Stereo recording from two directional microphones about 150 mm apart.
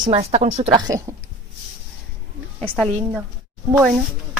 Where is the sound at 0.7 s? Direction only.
25° right (ahead or behind).